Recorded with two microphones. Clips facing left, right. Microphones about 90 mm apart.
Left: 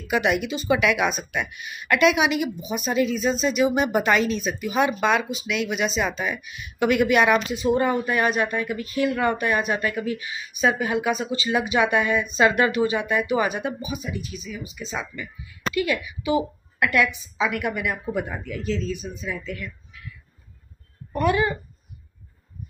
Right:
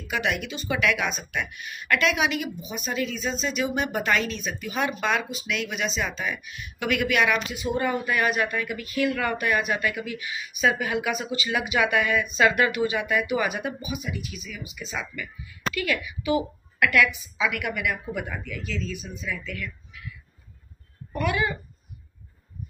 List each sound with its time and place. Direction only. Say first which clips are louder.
0.1 s speech: left 5 dB; 15° left (ahead or behind)
6.8 s a woman's voice: left 5 dB; 30° left (ahead or behind)
21.1 s a woman's voice: left 4 dB; 35° left (ahead or behind)